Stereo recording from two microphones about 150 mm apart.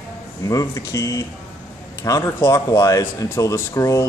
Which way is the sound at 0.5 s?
20° left (ahead or behind).